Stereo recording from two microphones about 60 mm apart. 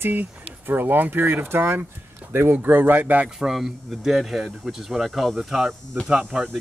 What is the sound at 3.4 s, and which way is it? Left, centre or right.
Speech, centre.